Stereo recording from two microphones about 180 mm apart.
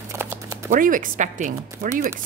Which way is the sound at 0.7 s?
50° right (ahead or behind).